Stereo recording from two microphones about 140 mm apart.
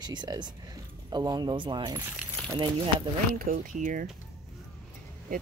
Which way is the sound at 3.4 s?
85° right.